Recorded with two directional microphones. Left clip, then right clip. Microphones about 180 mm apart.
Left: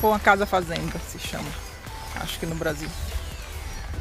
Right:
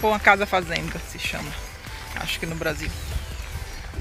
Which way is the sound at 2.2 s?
15° left (ahead or behind).